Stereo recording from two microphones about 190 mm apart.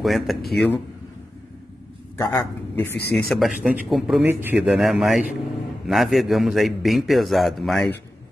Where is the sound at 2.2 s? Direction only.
10° left (ahead or behind).